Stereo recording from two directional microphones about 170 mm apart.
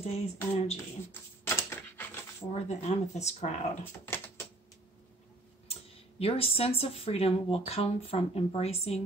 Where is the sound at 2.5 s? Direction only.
40° left (ahead or behind).